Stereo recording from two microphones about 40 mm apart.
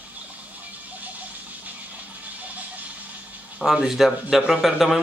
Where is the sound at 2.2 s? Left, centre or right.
Right.